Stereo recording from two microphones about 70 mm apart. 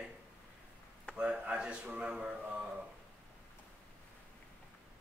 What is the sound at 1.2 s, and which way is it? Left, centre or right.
Speech, centre.